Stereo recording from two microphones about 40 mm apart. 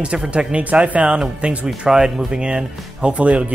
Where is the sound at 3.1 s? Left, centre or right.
Right.